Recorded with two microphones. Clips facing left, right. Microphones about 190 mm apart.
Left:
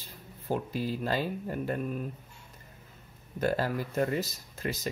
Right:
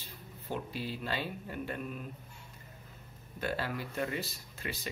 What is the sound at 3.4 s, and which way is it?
Speech, 45° left (ahead or behind).